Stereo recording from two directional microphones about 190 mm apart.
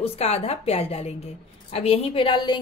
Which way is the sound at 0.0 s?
30° left (ahead or behind).